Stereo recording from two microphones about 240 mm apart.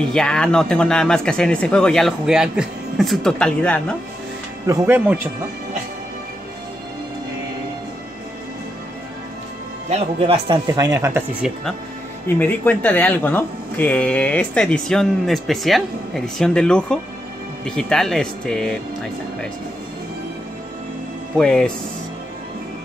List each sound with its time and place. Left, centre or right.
0.0 s speech: centre
4.6 s speech: centre
9.8 s speech: right
12.4 s speech: centre
21.4 s speech: centre